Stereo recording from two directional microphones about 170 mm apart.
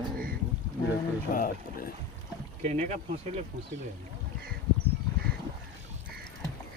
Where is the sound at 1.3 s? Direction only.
55° left (ahead or behind).